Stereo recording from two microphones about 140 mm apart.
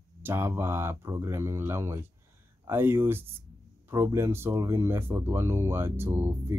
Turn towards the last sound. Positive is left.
turn(degrees=-15)  # may be behind; listen again after turning